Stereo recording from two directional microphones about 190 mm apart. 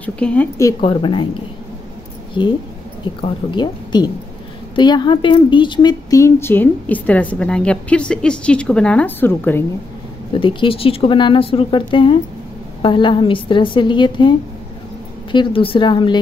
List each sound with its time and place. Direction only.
0.0 s speech: 5° left (ahead or behind)
0.7 s speech: 25° left (ahead or behind)
2.4 s speech: 25° left (ahead or behind)
10.3 s speech: 25° left (ahead or behind)
15.3 s speech: 25° left (ahead or behind)